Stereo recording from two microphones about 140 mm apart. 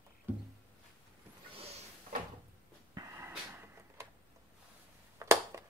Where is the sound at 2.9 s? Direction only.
20° right (ahead or behind).